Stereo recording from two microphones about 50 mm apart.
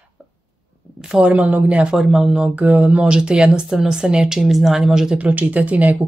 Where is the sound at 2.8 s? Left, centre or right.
Centre.